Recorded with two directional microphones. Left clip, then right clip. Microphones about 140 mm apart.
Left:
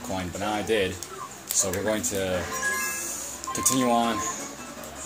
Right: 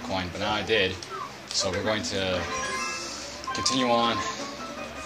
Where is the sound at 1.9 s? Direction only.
90° left.